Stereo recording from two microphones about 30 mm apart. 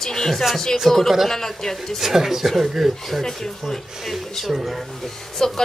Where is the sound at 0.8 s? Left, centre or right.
Centre.